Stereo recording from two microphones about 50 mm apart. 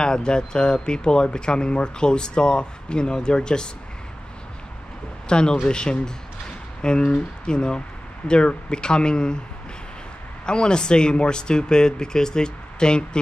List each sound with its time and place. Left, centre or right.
0.0 s speech: centre
5.3 s speech: centre
10.4 s speech: centre